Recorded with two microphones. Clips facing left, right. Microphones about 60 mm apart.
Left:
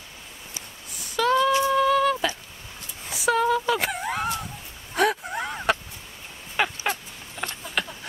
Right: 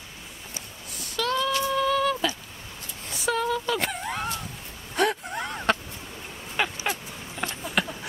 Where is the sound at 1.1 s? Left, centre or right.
Centre.